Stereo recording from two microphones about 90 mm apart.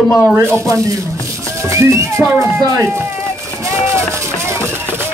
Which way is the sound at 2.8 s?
30° right (ahead or behind).